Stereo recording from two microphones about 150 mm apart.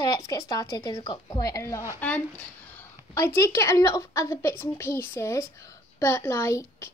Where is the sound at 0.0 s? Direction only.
25° left (ahead or behind).